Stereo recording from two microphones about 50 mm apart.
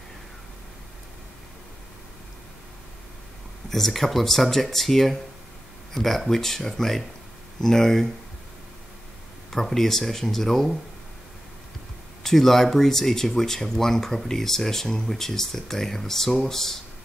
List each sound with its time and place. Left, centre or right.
3.7 s speech: centre
9.5 s speech: centre
12.2 s speech: centre